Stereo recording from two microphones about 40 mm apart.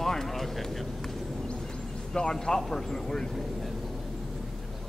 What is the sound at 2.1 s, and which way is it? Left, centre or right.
A man's voice, centre.